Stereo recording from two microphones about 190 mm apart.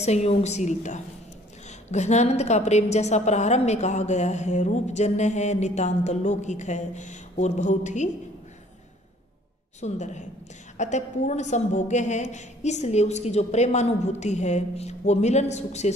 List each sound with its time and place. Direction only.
0.0 s a woman's voice: 35° left (ahead or behind)
9.8 s a woman's voice: 35° left (ahead or behind)